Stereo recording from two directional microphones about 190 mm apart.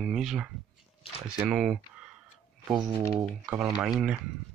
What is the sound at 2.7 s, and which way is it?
Speech, 20° right (ahead or behind).